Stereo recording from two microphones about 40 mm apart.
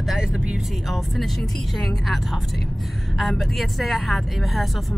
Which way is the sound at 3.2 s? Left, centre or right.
Centre.